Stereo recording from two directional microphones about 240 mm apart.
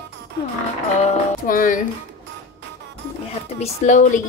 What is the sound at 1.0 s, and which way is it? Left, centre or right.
Speech, left.